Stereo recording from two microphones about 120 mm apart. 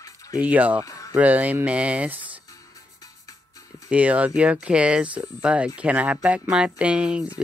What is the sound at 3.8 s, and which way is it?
Speech, 10° right (ahead or behind).